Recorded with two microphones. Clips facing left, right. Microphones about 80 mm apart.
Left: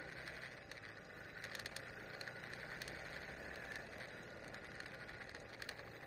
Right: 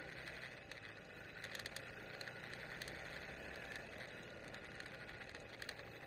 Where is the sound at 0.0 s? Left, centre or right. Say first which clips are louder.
Left 1 dB; centre.